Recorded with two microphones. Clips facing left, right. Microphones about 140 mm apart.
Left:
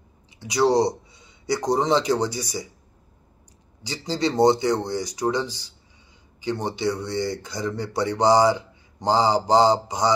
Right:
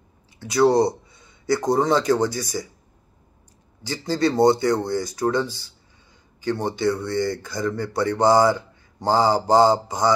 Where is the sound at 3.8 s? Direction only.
15° left (ahead or behind).